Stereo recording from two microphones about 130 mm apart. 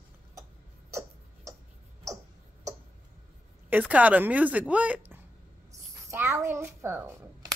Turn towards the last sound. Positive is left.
turn(degrees=-20)  # may be behind; listen again after turning